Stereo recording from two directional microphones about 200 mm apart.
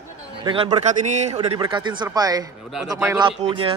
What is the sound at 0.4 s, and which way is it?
Speech, 25° right (ahead or behind).